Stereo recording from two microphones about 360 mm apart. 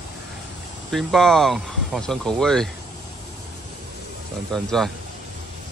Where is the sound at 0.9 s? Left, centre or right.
Centre.